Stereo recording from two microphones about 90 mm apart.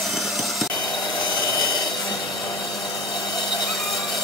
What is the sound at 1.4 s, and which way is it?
Wood, 45° left (ahead or behind).